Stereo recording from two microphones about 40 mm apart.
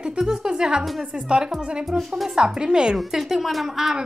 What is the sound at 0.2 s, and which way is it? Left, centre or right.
A woman's voice, centre.